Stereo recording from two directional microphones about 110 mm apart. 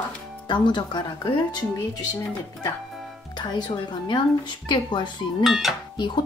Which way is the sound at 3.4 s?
45° left (ahead or behind).